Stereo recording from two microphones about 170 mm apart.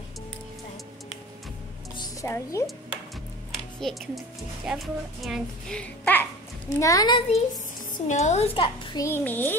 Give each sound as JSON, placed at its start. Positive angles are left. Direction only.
{"t": 2.2, "sound": "a child's voice", "side_deg": 15}
{"t": 3.8, "sound": "a child's voice", "side_deg": 0}
{"t": 6.7, "sound": "a woman's voice", "side_deg": 20}
{"t": 9.0, "sound": "a child's voice", "side_deg": 10}